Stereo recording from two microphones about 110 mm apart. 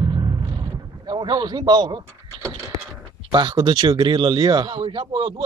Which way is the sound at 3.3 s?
45° right (ahead or behind).